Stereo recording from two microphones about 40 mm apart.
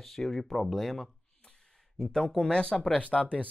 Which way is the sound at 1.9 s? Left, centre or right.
Centre.